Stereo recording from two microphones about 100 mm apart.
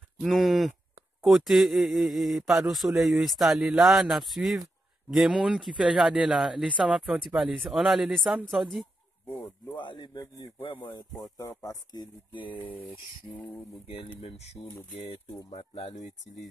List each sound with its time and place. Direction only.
0.2 s speech: centre (ahead or behind)
9.3 s speech: 50° left (ahead or behind)
11.3 s speech: 35° left (ahead or behind)
12.5 s a sound: 20° left (ahead or behind)
13.4 s speech: 20° left (ahead or behind)
13.9 s speech: 80° left